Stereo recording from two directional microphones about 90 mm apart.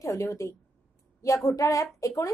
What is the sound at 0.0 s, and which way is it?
A woman's voice, 35° left (ahead or behind).